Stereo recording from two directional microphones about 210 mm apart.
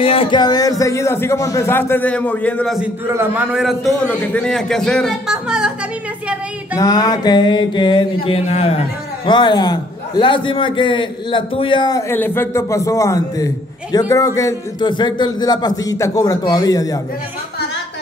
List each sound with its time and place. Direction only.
0.0 s a man's voice: 25° left (ahead or behind); by 5.7 s 5° right (ahead or behind)
6.8 s a sound: 15° left (ahead or behind)
13.9 s a man's voice: 15° left (ahead or behind)